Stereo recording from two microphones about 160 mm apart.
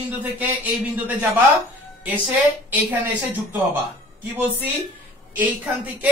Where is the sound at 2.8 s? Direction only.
10° right (ahead or behind).